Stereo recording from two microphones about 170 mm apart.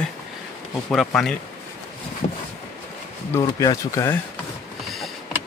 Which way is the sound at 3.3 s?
20° left (ahead or behind).